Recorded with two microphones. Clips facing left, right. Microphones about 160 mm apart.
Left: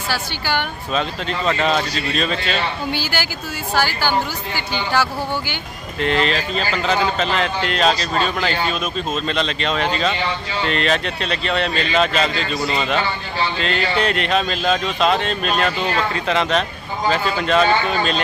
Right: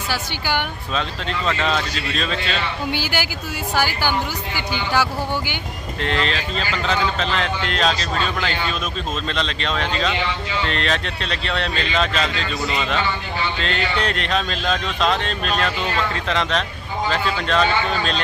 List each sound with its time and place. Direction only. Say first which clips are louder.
0.1 s speech: left 1 dB; 15° right (ahead or behind)
1.6 s speech: left 3 dB; 5° left (ahead or behind)
2.9 s speech: even; 15° right (ahead or behind)
5.9 s speech: left 4 dB; 5° left (ahead or behind)
9.3 s speech: left 3 dB; 5° left (ahead or behind)
12.4 s a man's voice: left 2 dB; 35° left (ahead or behind)
13.6 s speech: left 4 dB; 5° left (ahead or behind)